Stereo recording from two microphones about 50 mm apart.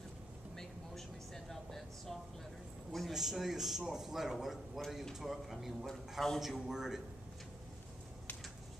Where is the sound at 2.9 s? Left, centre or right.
Centre.